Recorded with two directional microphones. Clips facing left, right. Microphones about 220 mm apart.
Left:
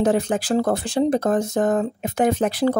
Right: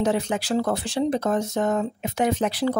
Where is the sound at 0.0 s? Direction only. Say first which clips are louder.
Left 4 dB; 50° left (ahead or behind).